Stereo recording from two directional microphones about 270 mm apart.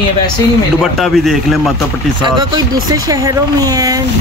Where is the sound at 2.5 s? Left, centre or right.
Centre.